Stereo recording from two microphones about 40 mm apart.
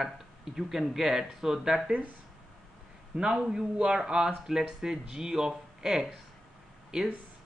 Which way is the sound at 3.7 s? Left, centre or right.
Right.